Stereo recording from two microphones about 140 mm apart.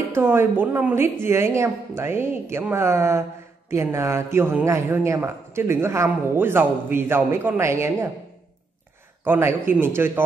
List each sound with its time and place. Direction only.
0.1 s a woman's voice: 15° right (ahead or behind)
9.2 s a woman's voice: 15° right (ahead or behind)